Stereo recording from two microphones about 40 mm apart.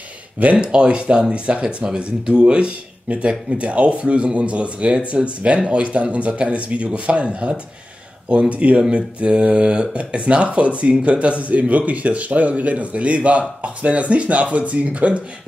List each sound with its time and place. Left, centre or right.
0.4 s speech: right